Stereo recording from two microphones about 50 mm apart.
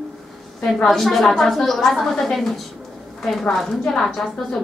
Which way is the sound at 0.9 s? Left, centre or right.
Centre.